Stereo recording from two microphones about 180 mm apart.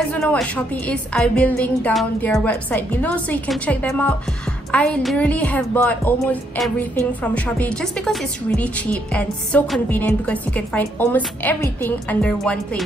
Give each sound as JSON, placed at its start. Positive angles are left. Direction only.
{"t": 0.1, "sound": "a woman's voice", "side_deg": 5}